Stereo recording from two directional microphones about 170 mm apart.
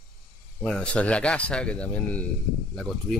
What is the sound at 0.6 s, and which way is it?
Speech, 5° left (ahead or behind).